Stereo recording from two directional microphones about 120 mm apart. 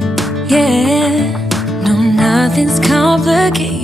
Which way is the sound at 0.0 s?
Centre (ahead or behind).